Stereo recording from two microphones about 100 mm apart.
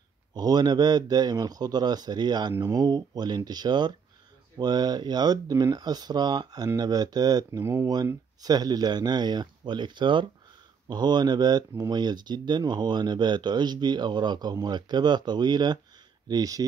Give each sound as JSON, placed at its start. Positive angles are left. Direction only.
{"t": 0.3, "sound": "speech", "side_deg": -40}
{"t": 7.6, "sound": "speech", "side_deg": -30}
{"t": 8.4, "sound": "speech", "side_deg": -40}